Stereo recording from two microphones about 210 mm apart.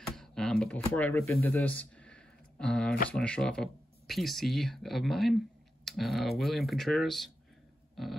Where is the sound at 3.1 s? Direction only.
5° left (ahead or behind).